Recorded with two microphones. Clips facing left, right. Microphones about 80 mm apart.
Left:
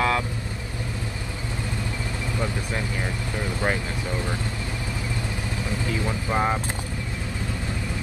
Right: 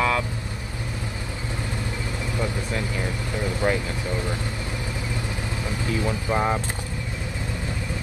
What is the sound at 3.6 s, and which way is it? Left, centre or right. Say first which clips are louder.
Speech: right 2 dB; left.